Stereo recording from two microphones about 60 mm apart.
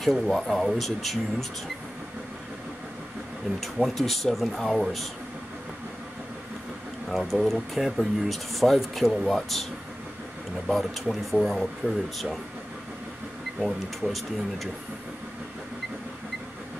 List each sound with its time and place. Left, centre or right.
0.0 s speech: centre
3.6 s speech: centre
7.1 s speech: centre
10.7 s speech: centre
13.6 s speech: centre